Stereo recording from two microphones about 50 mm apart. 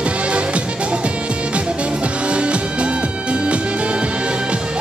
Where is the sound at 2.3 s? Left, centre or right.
Right.